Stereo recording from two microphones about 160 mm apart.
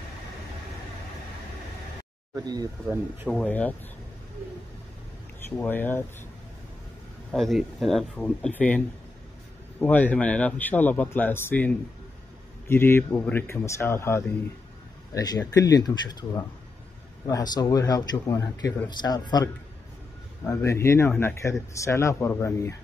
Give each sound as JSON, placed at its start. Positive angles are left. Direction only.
{"t": 2.3, "sound": "speech", "side_deg": -25}
{"t": 3.3, "sound": "speech", "side_deg": 5}
{"t": 5.6, "sound": "speech", "side_deg": 10}
{"t": 7.3, "sound": "speech", "side_deg": 0}